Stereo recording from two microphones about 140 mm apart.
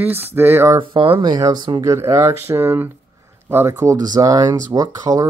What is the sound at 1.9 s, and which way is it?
Speech, 20° right (ahead or behind).